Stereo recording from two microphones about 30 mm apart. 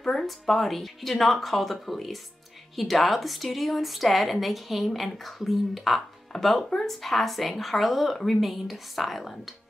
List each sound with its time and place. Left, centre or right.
0.1 s speech: centre
6.3 s speech: centre